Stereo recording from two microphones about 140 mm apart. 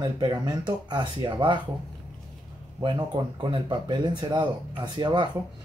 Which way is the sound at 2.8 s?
35° right (ahead or behind).